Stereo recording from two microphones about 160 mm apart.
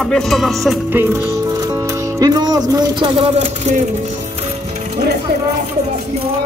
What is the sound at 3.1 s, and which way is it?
Speech, 35° right (ahead or behind).